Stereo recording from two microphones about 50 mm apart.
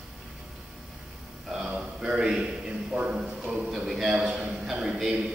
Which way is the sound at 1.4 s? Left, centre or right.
Centre.